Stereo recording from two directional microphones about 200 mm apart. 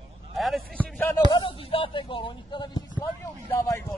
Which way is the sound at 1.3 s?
25° left (ahead or behind).